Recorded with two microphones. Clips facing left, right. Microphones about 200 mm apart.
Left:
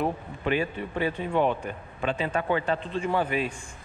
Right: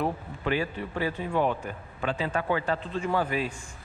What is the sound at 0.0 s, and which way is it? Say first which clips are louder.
Speech: left 1 dB; 20° left (ahead or behind).